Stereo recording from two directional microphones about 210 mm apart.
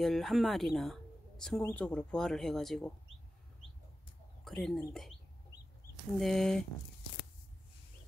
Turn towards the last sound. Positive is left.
turn(degrees=0)  # may be behind; listen again after turning